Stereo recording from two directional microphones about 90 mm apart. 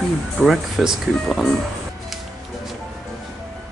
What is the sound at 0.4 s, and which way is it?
Speech, centre (ahead or behind).